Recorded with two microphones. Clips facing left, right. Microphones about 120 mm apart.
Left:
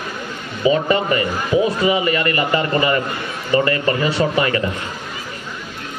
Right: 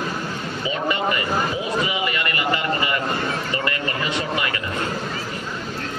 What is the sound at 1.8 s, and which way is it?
A man's voice, 40° left (ahead or behind).